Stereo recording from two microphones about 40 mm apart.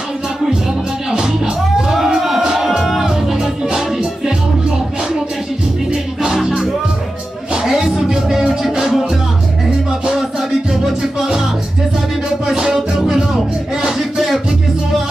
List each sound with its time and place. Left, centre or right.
1.1 s music: centre
6.2 s music: centre
10.7 s music: centre
12.4 s music: centre
13.8 s a sound: centre